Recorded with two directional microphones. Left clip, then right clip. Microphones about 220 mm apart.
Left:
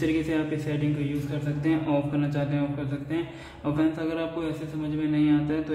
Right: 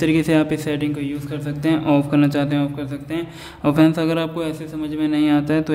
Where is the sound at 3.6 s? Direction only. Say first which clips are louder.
Right 10 dB; 45° right (ahead or behind).